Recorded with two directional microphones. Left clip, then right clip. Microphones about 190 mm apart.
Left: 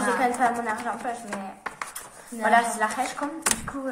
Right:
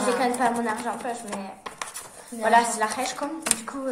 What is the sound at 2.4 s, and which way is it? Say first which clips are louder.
Speech: right 1 dB; 20° right (ahead or behind).